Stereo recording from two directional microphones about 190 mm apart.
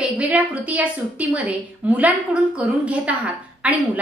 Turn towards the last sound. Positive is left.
turn(degrees=-5)  # may be behind; listen again after turning